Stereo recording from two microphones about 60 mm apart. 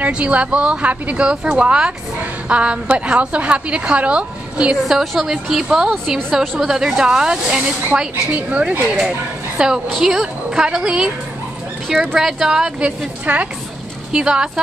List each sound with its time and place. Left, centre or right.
0.0 s a woman's voice: right
4.8 s a woman's voice: centre
12.2 s speech: centre
13.2 s a woman's voice: right
14.1 s speech: centre